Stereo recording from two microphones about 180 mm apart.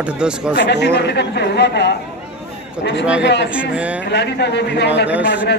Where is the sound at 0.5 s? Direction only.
70° left (ahead or behind).